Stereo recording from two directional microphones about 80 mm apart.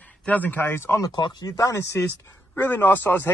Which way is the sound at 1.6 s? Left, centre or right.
Left.